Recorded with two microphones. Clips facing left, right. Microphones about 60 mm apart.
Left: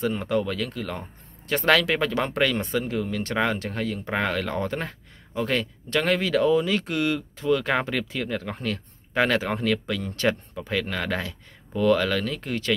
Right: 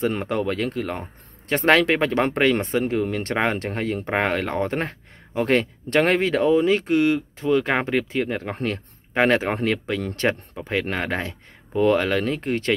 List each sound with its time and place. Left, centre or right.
0.2 s speech: right